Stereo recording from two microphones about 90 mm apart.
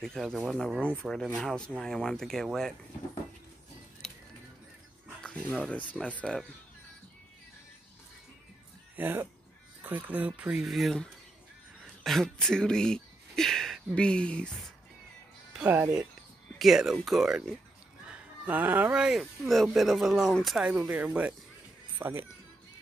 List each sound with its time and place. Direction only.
0.0 s speech: 5° left (ahead or behind)
4.0 s music: 5° left (ahead or behind)
5.2 s dog: 10° left (ahead or behind)
5.7 s speech: 15° left (ahead or behind)
8.9 s speech: 20° right (ahead or behind)
10.6 s speech: centre (ahead or behind)
15.6 s speech: 25° right (ahead or behind)
16.5 s speech: 5° right (ahead or behind)
18.0 s a sound: 15° right (ahead or behind)
18.9 s speech: 10° right (ahead or behind)
19.4 s speech: centre (ahead or behind)
20.6 s speech: 15° right (ahead or behind)
21.9 s music: 25° right (ahead or behind)